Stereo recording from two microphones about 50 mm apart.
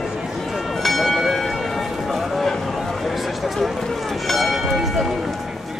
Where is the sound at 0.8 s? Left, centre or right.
Centre.